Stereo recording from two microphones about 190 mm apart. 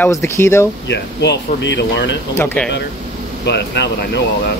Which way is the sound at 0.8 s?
65° left (ahead or behind).